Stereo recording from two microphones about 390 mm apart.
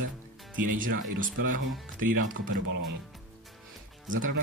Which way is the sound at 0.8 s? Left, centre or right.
Right.